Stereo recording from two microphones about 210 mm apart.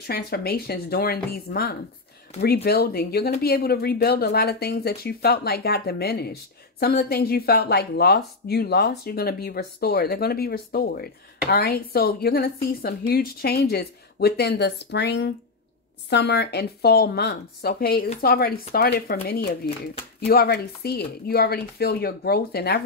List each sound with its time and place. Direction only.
0.0 s speech: 50° left (ahead or behind)